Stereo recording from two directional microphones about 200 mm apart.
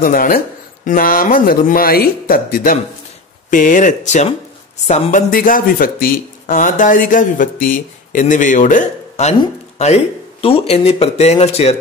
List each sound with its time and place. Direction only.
0.0 s speech: 45° left (ahead or behind)
10.4 s speech: 30° left (ahead or behind)